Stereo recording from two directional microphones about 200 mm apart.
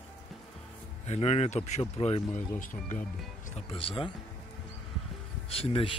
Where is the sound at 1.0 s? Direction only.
30° left (ahead or behind).